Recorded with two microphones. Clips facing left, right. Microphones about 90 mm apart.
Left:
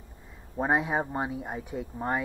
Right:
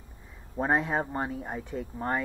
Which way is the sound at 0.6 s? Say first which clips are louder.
Even; 10° left (ahead or behind).